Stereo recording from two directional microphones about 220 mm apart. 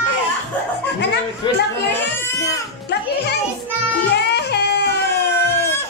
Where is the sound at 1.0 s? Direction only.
50° left (ahead or behind).